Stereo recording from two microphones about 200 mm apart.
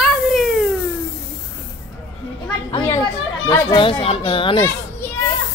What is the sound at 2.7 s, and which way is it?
Chatter, 15° left (ahead or behind).